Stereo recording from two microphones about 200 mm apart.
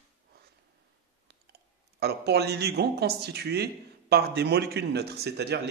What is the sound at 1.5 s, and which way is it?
A man's voice, 55° right (ahead or behind).